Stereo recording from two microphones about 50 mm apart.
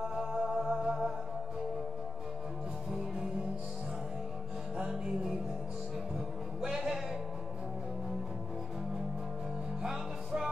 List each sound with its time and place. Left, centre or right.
0.1 s music: centre
4.7 s music: centre
6.7 s music: centre
9.8 s music: centre